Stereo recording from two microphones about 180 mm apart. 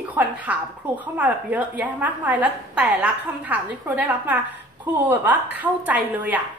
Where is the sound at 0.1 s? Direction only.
10° right (ahead or behind).